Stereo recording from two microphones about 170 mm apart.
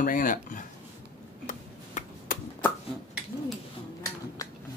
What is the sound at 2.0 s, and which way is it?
Chop, 45° left (ahead or behind).